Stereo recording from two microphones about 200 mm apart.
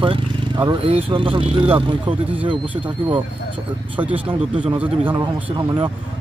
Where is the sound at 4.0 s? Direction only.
25° right (ahead or behind).